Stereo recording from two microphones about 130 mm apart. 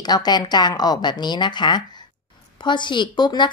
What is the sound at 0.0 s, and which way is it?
Speech, 30° left (ahead or behind).